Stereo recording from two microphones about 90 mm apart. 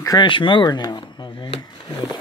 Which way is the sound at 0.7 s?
50° left (ahead or behind).